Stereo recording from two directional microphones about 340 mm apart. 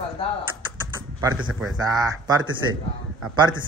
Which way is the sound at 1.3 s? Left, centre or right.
Right.